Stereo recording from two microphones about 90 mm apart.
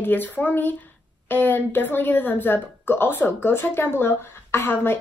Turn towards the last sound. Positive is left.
turn(degrees=25)  # may be behind; listen again after turning